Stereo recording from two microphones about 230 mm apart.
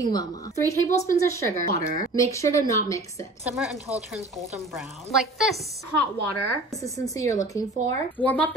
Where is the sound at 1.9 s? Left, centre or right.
Centre.